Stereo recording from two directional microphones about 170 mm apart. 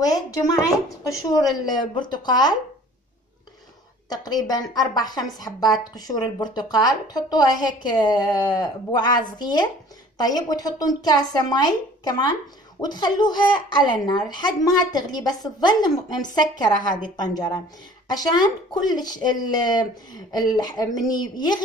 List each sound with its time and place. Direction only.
0.7 s a woman's voice: 20° left (ahead or behind)
4.1 s a woman's voice: 25° left (ahead or behind)
5.5 s a woman's voice: 10° left (ahead or behind)
5.9 s a woman's voice: 25° left (ahead or behind)